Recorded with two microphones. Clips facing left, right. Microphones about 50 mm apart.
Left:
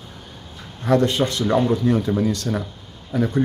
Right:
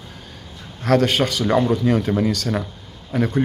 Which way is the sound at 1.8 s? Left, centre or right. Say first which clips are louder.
Right 1 dB; right.